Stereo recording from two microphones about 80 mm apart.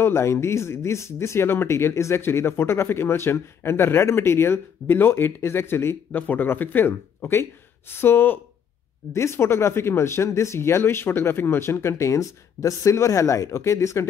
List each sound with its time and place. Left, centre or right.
0.0 s speech: left